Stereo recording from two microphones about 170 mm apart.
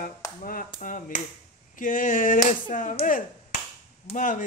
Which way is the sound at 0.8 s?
50° left (ahead or behind).